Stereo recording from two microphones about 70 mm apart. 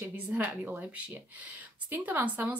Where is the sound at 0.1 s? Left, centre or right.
Right.